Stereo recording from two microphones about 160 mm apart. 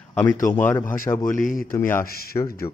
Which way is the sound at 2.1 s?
70° left (ahead or behind).